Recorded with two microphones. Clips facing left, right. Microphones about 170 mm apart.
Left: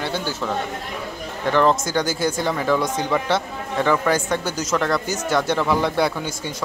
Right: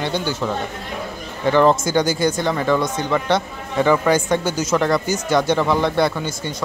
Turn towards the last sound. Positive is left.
turn(degrees=10)  # may be behind; listen again after turning